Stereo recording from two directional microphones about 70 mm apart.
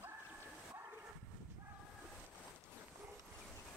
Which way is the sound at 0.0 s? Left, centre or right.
Right.